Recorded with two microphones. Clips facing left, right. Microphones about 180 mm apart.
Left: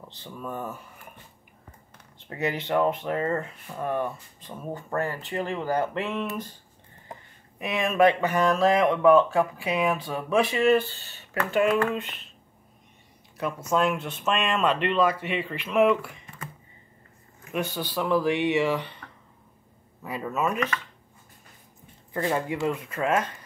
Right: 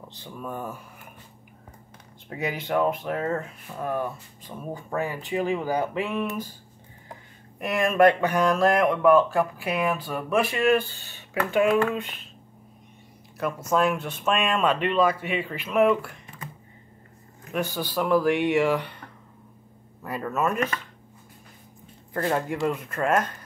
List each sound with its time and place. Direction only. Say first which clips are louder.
0.2 s speech: even; 10° right (ahead or behind)
2.2 s speech: left 1 dB; 10° right (ahead or behind)
7.5 s speech: right 3 dB; 5° left (ahead or behind)
8.4 s speech: even; 10° right (ahead or behind)
13.4 s speech: right 1 dB; 5° right (ahead or behind)
17.5 s speech: right 1 dB; 5° right (ahead or behind)
20.0 s speech: right 1 dB; 5° left (ahead or behind)
20.5 s speech: right 1 dB; 45° right (ahead or behind)
22.1 s speech: right 1 dB; centre (ahead or behind)